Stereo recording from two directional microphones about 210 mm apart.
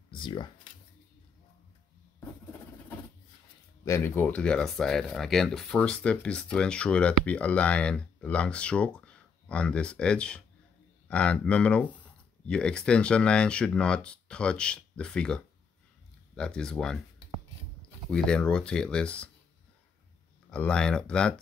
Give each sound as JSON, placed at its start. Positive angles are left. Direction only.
{"t": 0.1, "sound": "speech", "side_deg": 20}
{"t": 3.8, "sound": "speech", "side_deg": 10}
{"t": 18.1, "sound": "speech", "side_deg": 5}
{"t": 20.5, "sound": "speech", "side_deg": 5}